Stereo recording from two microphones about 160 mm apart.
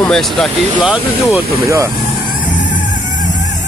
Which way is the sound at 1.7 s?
20° right (ahead or behind).